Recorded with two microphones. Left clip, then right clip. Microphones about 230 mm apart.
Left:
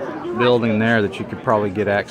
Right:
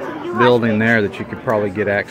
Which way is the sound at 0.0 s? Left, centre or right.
Right.